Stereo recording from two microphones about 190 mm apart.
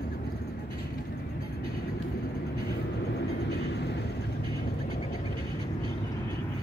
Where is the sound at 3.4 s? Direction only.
60° left (ahead or behind).